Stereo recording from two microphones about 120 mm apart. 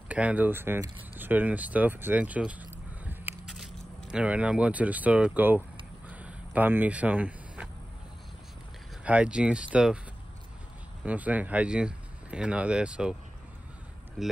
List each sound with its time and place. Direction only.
0.1 s speech: 10° right (ahead or behind)
6.0 s a sound: 10° right (ahead or behind)
9.0 s speech: 10° right (ahead or behind)
11.1 s speech: 10° right (ahead or behind)
14.2 s speech: 5° right (ahead or behind)